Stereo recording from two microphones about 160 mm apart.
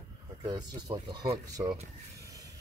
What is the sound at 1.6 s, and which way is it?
Speech, 15° right (ahead or behind).